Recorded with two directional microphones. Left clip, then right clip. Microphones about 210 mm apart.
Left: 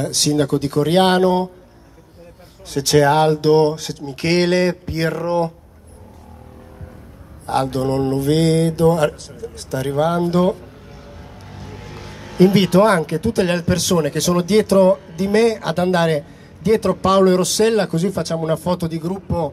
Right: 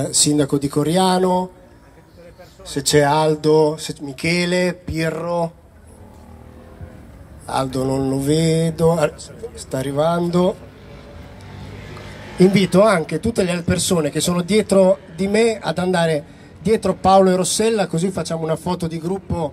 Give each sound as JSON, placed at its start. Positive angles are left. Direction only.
{"t": 0.0, "sound": "speech", "side_deg": 35}
{"t": 2.6, "sound": "speech", "side_deg": 40}
{"t": 7.4, "sound": "speech", "side_deg": 35}
{"t": 12.5, "sound": "speech", "side_deg": 40}